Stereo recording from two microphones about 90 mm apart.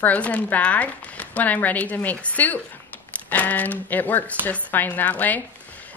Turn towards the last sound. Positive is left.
turn(degrees=20)  # may be behind; listen again after turning